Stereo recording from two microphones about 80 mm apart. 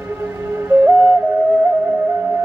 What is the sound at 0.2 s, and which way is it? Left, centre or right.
Music, right.